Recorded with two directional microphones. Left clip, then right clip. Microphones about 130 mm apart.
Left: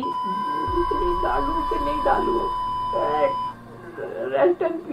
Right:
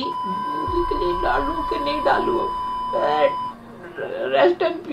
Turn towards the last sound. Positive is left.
turn(degrees=-15)  # may be behind; listen again after turning